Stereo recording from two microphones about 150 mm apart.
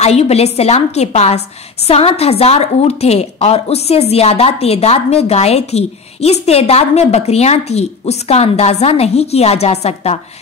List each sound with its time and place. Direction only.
0.0 s a woman's voice: 45° left (ahead or behind)